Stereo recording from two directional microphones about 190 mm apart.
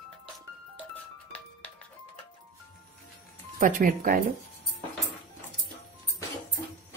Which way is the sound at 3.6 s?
45° right (ahead or behind).